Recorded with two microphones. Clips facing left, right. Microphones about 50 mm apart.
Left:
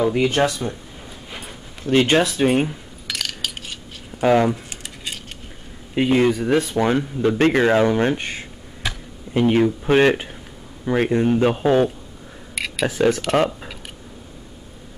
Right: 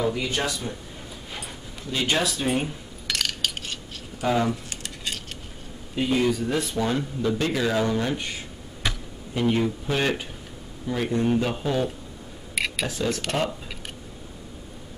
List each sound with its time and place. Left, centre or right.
0.1 s speech: left
1.9 s speech: left
3.1 s a sound: centre
4.2 s speech: left
5.9 s speech: left
9.5 s speech: left
12.5 s a sound: centre
13.1 s speech: centre